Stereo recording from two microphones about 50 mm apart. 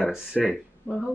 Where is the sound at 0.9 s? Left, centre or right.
Left.